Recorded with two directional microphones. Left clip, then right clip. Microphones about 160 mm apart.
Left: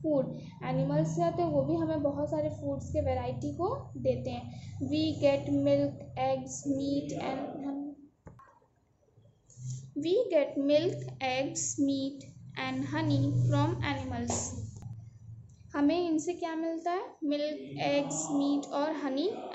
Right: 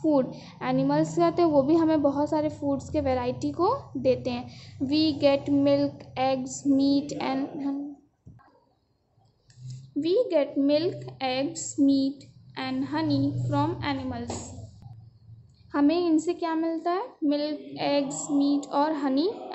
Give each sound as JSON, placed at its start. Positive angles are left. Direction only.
{"t": 0.0, "sound": "a woman's voice", "side_deg": -30}
{"t": 9.9, "sound": "a woman's voice", "side_deg": -25}
{"t": 15.7, "sound": "a woman's voice", "side_deg": -25}